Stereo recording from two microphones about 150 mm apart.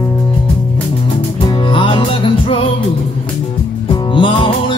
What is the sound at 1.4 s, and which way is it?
Music, 35° left (ahead or behind).